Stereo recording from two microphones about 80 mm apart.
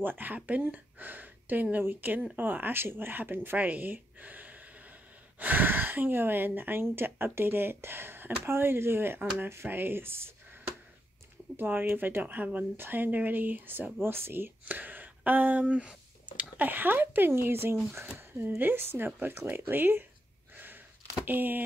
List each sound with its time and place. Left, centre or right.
0.0 s speech: right
11.5 s speech: right
20.5 s a sound: right
21.3 s speech: right